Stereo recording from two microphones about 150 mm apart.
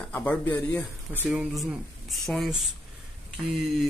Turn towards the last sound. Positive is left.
turn(degrees=0)  # may be behind; listen again after turning